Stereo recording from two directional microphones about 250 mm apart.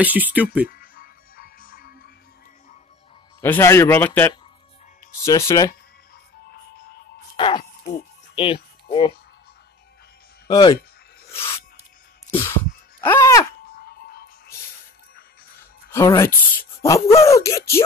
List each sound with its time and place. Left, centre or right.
0.0 s speech: centre
0.7 s music: left
3.3 s speech: centre
7.3 s speech: centre
7.8 s music: left
10.5 s speech: centre
11.3 s a sound: centre
12.3 s music: centre
13.0 s a sound: centre
13.7 s music: left
15.9 s speech: centre